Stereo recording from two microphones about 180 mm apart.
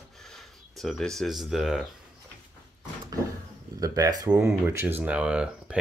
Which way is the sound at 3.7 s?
20° right (ahead or behind).